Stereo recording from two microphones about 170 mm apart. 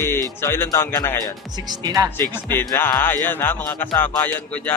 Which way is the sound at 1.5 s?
25° right (ahead or behind).